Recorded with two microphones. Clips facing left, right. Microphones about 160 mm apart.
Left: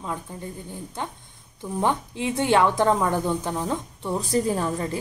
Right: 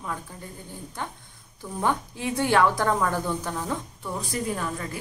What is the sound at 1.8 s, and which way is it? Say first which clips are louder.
A woman's voice: left 2 dB; 20° left (ahead or behind).